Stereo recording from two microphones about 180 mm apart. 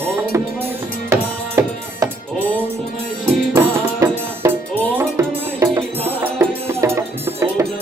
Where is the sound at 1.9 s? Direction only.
10° right (ahead or behind).